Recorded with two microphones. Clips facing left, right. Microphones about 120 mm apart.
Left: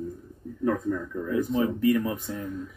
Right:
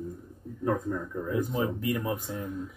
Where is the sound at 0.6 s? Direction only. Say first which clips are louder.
Left 3 dB; 20° right (ahead or behind).